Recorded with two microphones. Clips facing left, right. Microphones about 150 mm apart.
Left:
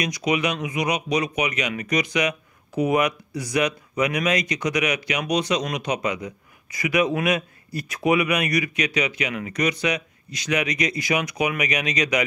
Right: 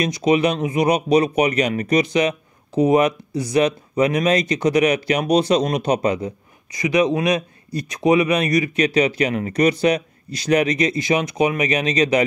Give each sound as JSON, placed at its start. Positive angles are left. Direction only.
{"t": 0.0, "sound": "speech", "side_deg": -30}
{"t": 6.8, "sound": "speech", "side_deg": -20}